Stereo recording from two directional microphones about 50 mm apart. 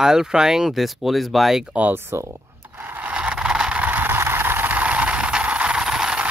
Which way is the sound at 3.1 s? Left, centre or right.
Right.